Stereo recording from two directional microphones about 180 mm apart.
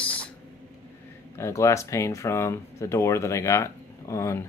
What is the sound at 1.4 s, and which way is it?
Speech, 15° left (ahead or behind).